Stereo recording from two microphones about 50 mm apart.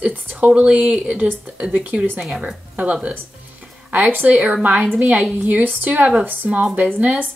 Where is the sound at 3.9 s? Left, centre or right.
Right.